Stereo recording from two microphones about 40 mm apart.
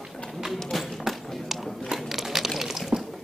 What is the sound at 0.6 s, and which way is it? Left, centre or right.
Music, centre.